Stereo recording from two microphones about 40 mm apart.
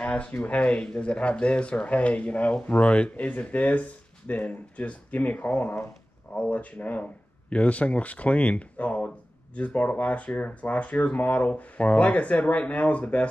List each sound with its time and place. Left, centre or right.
0.0 s speech: left
6.5 s speech: left